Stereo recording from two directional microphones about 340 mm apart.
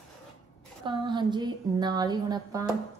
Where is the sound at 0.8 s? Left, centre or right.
Centre.